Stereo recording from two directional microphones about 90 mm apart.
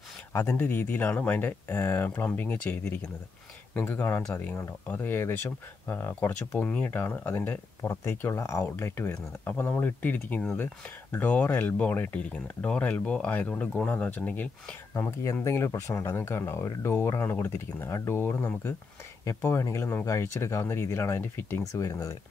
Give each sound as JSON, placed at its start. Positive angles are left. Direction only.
{"t": 0.4, "sound": "speech", "side_deg": 20}